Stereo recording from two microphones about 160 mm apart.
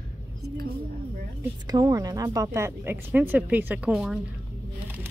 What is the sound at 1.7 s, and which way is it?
Speech, 25° right (ahead or behind).